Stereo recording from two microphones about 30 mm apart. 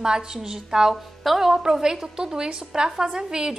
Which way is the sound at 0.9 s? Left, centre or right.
Centre.